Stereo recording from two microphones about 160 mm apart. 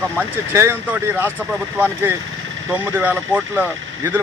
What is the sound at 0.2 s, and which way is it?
Speech, 15° right (ahead or behind).